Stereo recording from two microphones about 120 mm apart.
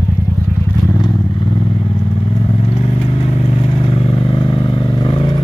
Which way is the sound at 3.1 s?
55° left (ahead or behind).